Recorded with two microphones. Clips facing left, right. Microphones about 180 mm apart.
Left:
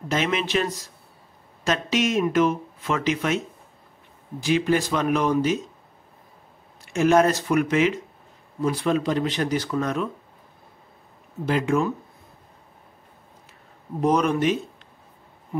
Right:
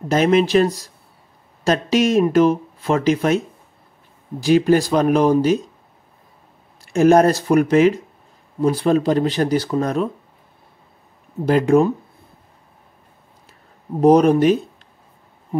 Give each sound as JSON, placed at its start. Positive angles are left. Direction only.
{"t": 0.1, "sound": "speech", "side_deg": -40}
{"t": 4.4, "sound": "speech", "side_deg": -40}
{"t": 6.8, "sound": "speech", "side_deg": -40}
{"t": 11.4, "sound": "speech", "side_deg": -40}
{"t": 14.0, "sound": "speech", "side_deg": -35}